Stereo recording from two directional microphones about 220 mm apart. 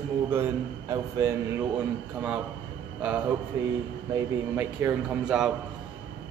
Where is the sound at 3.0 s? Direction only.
5° right (ahead or behind).